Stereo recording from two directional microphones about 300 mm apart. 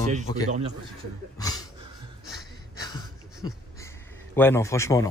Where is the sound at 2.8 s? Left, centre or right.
Centre.